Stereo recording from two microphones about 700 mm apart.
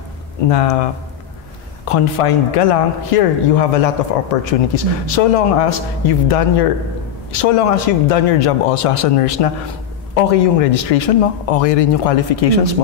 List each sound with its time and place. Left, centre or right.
0.5 s speech: left
1.9 s speech: left
10.6 s speech: left